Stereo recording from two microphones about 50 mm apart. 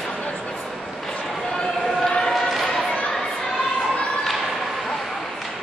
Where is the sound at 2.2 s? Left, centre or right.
Centre.